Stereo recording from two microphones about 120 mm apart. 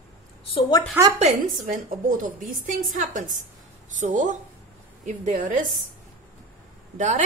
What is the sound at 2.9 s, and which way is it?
A woman's voice, 90° right.